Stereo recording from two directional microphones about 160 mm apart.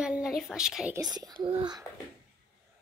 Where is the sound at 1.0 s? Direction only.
25° right (ahead or behind).